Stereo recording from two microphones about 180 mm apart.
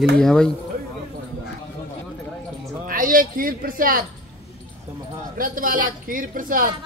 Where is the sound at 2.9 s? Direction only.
50° right (ahead or behind).